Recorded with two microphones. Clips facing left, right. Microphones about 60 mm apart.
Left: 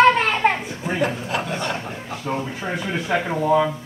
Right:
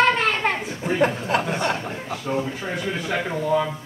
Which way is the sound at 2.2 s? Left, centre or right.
Centre.